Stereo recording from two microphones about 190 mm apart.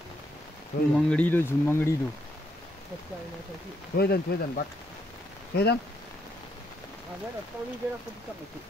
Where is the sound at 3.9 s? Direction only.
55° left (ahead or behind).